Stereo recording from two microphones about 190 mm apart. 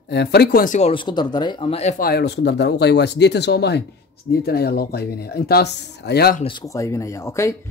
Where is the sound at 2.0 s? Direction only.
60° left (ahead or behind).